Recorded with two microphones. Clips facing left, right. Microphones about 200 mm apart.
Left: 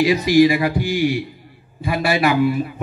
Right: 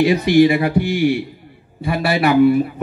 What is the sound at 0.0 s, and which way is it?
Speech, 60° right (ahead or behind).